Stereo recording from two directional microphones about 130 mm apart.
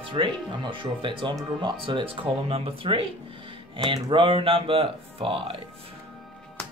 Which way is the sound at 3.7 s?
35° right (ahead or behind).